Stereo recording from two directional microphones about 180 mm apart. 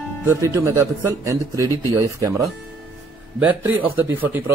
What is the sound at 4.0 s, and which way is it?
Speech, 10° right (ahead or behind).